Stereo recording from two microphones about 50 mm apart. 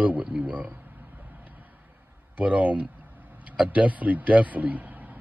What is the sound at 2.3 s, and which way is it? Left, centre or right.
Speech, right.